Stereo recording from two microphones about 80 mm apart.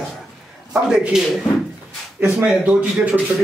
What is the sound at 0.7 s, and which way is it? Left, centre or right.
A man's voice, centre.